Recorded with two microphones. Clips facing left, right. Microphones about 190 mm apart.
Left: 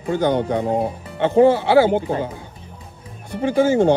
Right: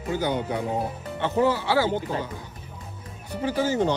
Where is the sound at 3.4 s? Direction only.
50° left (ahead or behind).